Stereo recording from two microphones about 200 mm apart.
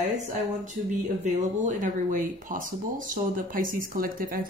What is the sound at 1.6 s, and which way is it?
Speech, 40° right (ahead or behind).